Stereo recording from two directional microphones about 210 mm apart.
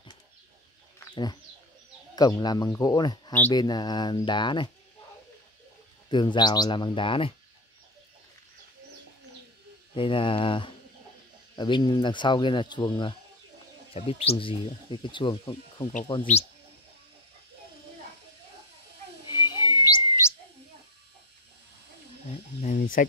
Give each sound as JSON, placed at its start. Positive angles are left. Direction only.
{"t": 0.9, "sound": "bird", "side_deg": 20}
{"t": 2.1, "sound": "speech", "side_deg": 20}
{"t": 6.0, "sound": "speech", "side_deg": 20}
{"t": 9.9, "sound": "speech", "side_deg": 25}
{"t": 19.2, "sound": "bird", "side_deg": 20}
{"t": 22.6, "sound": "a sound", "side_deg": 35}